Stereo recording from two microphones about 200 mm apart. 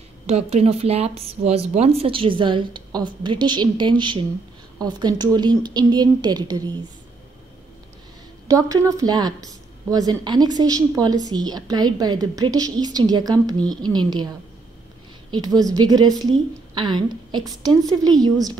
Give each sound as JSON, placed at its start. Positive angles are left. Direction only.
{"t": 0.3, "sound": "a woman's voice", "side_deg": -30}
{"t": 8.5, "sound": "a woman's voice", "side_deg": -15}
{"t": 15.3, "sound": "a woman's voice", "side_deg": -20}